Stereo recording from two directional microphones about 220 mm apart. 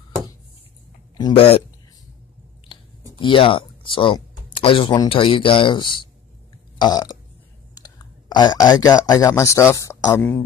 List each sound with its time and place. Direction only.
1.1 s speech: 20° left (ahead or behind)
2.7 s a sound: 25° left (ahead or behind)
3.2 s speech: 25° left (ahead or behind)
6.8 s burping: 20° left (ahead or behind)
7.7 s speech: 15° left (ahead or behind)